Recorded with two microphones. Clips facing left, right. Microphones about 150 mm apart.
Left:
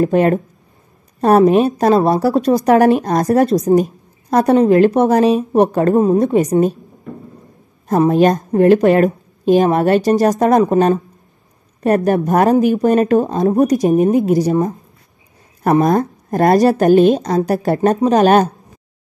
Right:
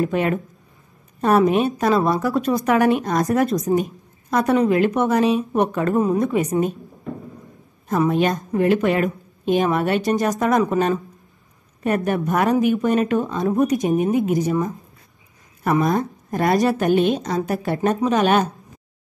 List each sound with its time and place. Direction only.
0.0 s a woman's voice: 40° left (ahead or behind)
8.1 s a woman's voice: 50° left (ahead or behind)